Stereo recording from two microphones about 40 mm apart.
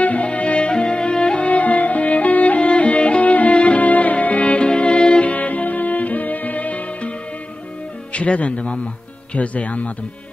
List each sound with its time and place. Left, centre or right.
0.0 s music: left
1.5 s music: left
4.6 s music: left
5.2 s music: left
8.1 s speech: left